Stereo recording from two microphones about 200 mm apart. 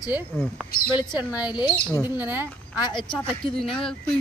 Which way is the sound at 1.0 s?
20° left (ahead or behind).